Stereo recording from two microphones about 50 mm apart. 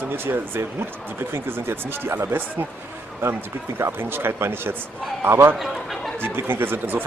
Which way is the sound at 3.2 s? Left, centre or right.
Right.